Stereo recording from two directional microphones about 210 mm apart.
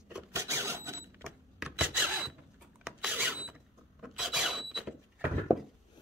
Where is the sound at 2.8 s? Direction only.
5° right (ahead or behind).